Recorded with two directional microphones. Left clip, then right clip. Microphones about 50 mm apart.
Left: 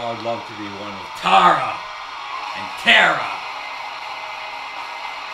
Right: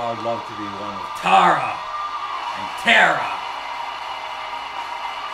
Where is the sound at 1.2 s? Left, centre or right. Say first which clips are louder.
Left 1 dB; centre.